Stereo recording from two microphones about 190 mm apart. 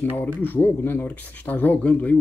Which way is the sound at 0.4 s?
10° left (ahead or behind).